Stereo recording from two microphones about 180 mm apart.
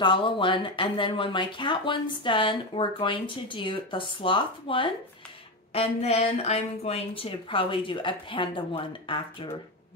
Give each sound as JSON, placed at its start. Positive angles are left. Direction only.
{"t": 0.0, "sound": "speech", "side_deg": 25}